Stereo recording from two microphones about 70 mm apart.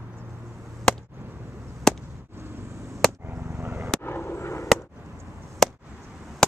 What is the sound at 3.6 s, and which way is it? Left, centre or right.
Vehicle, right.